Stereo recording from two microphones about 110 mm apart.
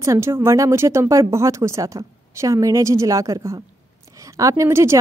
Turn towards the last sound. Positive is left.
turn(degrees=-25)  # may be behind; listen again after turning